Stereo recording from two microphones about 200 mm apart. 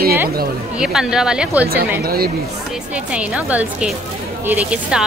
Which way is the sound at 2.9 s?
5° right (ahead or behind).